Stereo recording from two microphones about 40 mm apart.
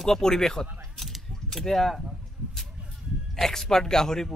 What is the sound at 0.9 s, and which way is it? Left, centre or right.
Keys jangling, centre.